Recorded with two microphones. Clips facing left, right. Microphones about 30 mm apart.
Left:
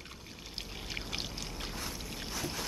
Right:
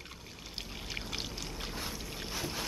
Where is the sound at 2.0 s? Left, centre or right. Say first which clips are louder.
Even; centre.